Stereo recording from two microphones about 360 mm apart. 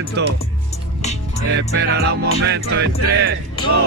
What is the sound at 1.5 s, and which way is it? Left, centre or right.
Music, right.